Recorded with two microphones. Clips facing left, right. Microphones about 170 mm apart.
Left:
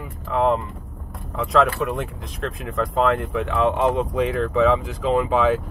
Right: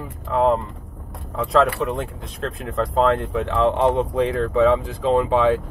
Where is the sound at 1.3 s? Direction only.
35° right (ahead or behind).